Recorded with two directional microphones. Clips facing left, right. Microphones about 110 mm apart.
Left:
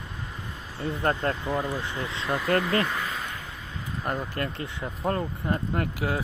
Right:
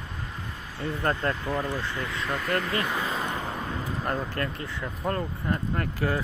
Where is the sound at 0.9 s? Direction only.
20° left (ahead or behind).